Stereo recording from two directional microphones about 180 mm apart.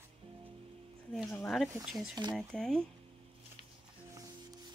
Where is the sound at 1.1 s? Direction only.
5° left (ahead or behind).